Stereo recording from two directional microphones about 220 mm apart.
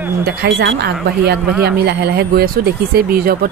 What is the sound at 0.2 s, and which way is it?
A woman's voice, 45° right (ahead or behind).